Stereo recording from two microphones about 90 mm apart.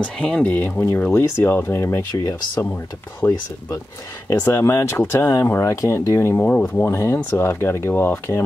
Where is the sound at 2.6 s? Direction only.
25° left (ahead or behind).